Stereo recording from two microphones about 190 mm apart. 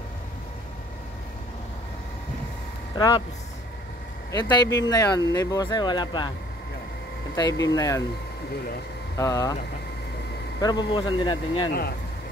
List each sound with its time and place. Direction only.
3.0 s speech: 20° left (ahead or behind)
4.3 s speech: 20° left (ahead or behind)
7.3 s speech: 20° left (ahead or behind)
9.1 s speech: 15° left (ahead or behind)
10.6 s speech: 20° left (ahead or behind)